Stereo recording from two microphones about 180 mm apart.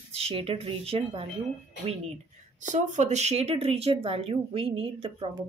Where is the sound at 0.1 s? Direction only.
35° right (ahead or behind).